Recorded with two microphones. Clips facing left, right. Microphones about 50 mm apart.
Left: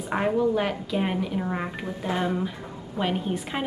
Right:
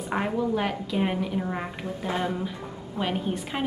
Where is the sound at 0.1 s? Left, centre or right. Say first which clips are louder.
Left 3 dB; centre.